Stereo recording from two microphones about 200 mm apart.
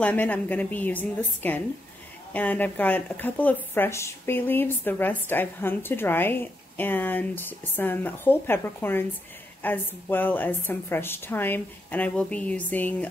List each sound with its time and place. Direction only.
0.0 s speech: 5° left (ahead or behind)